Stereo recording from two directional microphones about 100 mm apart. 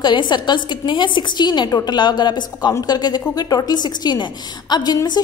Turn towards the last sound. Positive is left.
turn(degrees=45)  # may be behind; listen again after turning